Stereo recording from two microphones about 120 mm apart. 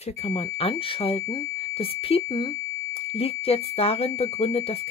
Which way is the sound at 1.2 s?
30° left (ahead or behind).